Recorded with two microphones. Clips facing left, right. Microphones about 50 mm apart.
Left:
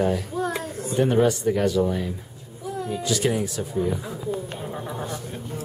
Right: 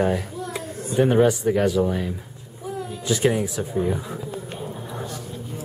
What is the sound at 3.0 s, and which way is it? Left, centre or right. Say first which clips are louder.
Speech: right 4 dB; right.